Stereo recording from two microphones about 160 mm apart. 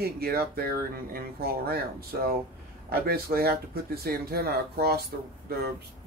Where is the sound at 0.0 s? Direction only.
70° right (ahead or behind).